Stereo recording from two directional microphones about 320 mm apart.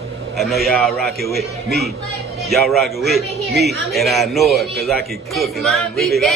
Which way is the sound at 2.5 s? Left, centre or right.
Centre.